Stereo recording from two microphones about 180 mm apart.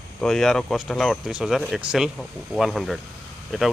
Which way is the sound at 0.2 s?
Centre (ahead or behind).